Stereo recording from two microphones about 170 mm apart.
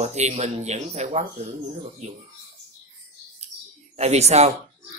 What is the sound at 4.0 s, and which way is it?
Speech, 40° right (ahead or behind).